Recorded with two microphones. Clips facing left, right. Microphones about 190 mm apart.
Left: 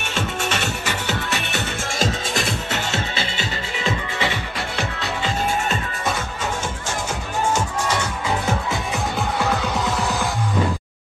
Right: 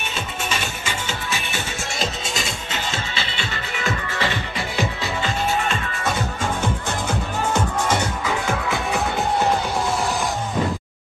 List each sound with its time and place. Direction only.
0.1 s music: 70° left (ahead or behind)
3.7 s music: 25° left (ahead or behind)